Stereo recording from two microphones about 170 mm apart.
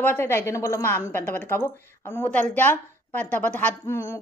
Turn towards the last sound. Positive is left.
turn(degrees=15)  # may be behind; listen again after turning